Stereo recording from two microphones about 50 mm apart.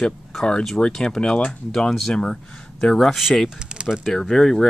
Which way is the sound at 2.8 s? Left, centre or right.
Centre.